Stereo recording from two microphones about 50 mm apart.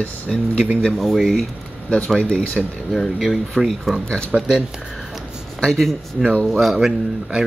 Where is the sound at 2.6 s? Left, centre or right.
Centre.